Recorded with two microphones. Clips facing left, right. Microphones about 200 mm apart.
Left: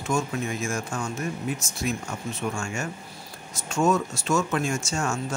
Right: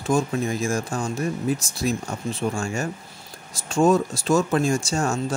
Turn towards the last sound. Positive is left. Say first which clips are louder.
# right 4 dB
turn(degrees=-35)  # may be behind; listen again after turning